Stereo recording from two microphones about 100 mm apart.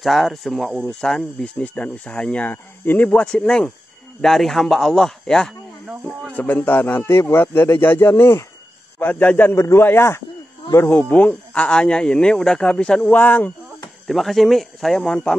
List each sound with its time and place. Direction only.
0.0 s speech: centre (ahead or behind)
6.3 s speech: 20° left (ahead or behind)
14.0 s speech: centre (ahead or behind)